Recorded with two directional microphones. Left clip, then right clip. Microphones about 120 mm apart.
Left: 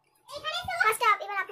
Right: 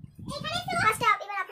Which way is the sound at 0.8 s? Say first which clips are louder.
Left 1 dB; 30° left (ahead or behind).